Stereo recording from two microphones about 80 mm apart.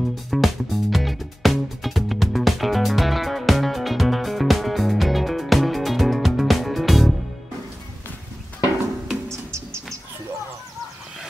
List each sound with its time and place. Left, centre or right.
0.1 s music: centre
9.3 s insect: right